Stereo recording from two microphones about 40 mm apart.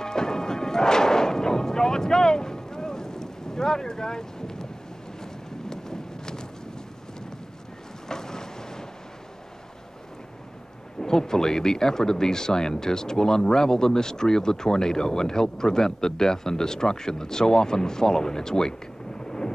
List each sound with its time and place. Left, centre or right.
0.0 s music: centre
5.2 s vehicle: centre
8.1 s boat: centre
11.0 s speech: centre